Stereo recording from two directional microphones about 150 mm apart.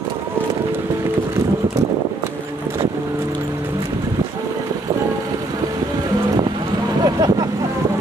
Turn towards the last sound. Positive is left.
turn(degrees=-25)  # may be behind; listen again after turning